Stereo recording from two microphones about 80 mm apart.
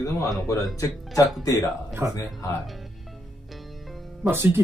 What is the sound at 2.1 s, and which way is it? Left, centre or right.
Speech, left.